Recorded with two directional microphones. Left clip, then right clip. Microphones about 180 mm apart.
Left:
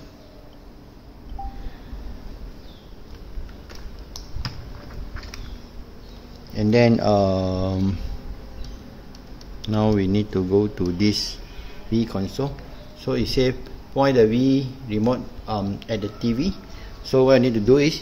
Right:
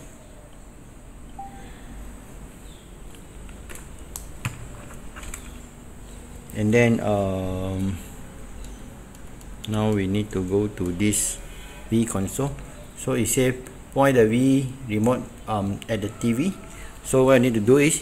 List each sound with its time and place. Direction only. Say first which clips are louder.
6.5 s speech: left 2 dB; 10° left (ahead or behind)
6.9 s speech: left 4 dB; 25° left (ahead or behind)
9.7 s speech: left 3 dB; 25° left (ahead or behind)
12.1 s a man's voice: even; centre (ahead or behind)